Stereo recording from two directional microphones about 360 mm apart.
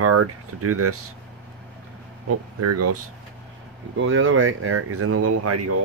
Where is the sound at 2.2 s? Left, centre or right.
Right.